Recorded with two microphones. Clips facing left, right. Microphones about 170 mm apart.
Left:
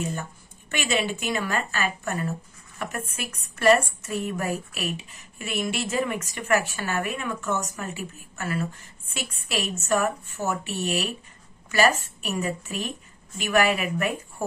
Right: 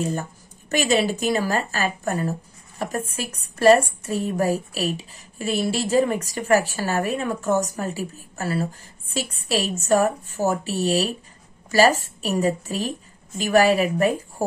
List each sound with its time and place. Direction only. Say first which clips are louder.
0.0 s a woman's voice: right 5 dB; 35° right (ahead or behind)